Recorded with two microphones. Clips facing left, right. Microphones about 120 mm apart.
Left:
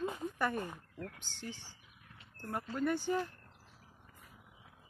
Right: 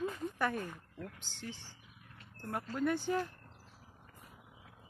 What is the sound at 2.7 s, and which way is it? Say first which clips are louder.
Speech: even; centre (ahead or behind).